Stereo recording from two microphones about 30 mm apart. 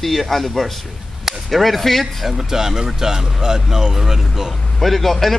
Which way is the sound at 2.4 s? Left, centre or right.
Centre.